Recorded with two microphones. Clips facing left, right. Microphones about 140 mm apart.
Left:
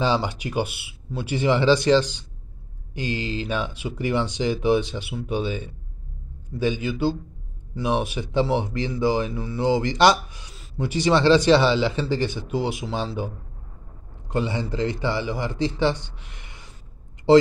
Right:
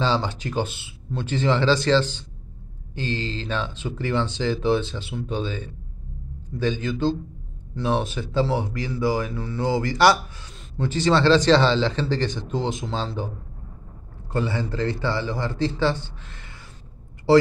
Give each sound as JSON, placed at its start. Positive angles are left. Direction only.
{"t": 0.0, "sound": "a man's voice", "side_deg": 15}
{"t": 14.3, "sound": "a man's voice", "side_deg": 20}